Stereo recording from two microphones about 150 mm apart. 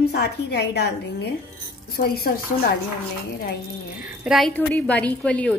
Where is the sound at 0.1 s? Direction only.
90° left.